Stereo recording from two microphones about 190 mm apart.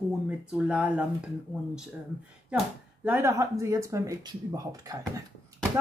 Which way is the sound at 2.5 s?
10° right (ahead or behind).